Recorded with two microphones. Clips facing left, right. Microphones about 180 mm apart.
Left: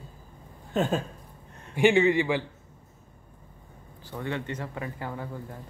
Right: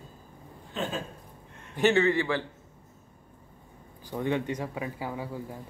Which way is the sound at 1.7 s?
15° left (ahead or behind).